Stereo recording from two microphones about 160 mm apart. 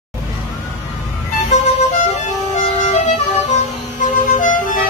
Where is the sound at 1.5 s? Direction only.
45° left (ahead or behind).